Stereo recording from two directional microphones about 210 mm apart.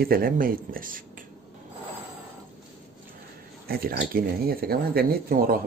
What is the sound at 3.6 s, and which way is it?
Speech, 45° right (ahead or behind).